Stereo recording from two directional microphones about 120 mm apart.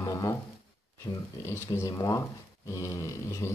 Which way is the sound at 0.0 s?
25° left (ahead or behind).